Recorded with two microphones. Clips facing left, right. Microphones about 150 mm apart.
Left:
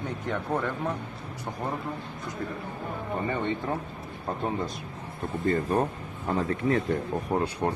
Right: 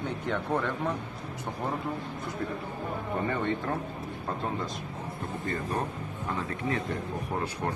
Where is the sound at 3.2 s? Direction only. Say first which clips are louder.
Left 1 dB; 10° left (ahead or behind).